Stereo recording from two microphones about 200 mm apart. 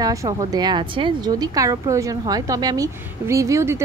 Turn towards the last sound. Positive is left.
turn(degrees=-15)  # may be behind; listen again after turning